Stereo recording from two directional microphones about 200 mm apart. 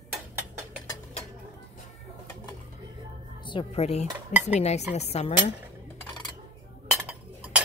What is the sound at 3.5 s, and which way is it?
Dishes, 30° left (ahead or behind).